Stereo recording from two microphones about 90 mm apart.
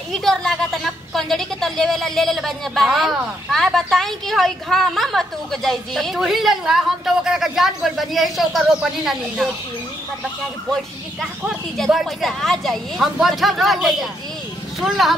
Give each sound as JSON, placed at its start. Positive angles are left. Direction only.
{"t": 0.1, "sound": "a woman's voice", "side_deg": 5}
{"t": 10.7, "sound": "a woman's voice", "side_deg": 0}